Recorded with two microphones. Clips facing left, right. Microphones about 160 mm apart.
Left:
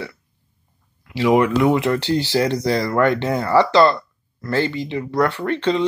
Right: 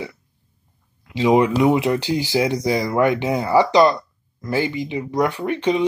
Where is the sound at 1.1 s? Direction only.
20° right (ahead or behind).